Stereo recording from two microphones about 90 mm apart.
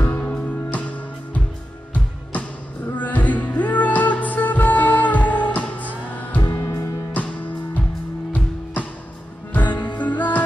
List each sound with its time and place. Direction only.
0.0 s music: 25° left (ahead or behind)
3.0 s music: 20° left (ahead or behind)
6.4 s music: 35° left (ahead or behind)
7.2 s music: 15° left (ahead or behind)
9.5 s music: 20° left (ahead or behind)